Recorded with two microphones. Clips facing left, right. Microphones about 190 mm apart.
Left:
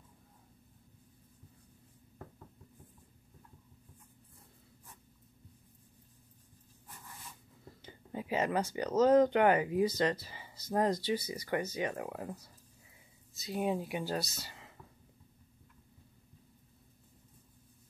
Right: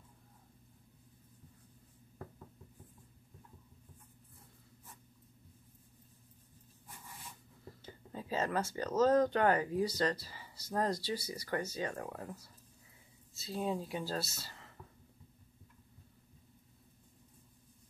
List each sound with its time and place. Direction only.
7.8 s speech: 15° left (ahead or behind)